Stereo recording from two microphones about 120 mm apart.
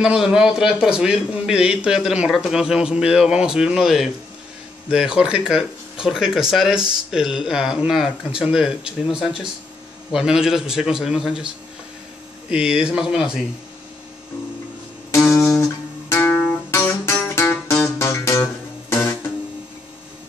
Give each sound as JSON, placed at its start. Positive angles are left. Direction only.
{"t": 0.0, "sound": "a man's voice", "side_deg": -5}
{"t": 15.0, "sound": "guitar", "side_deg": 25}